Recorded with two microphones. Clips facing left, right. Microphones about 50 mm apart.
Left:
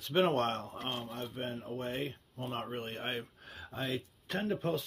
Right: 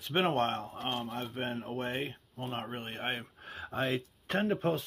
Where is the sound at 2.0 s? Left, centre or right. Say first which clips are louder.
Right 1 dB; right.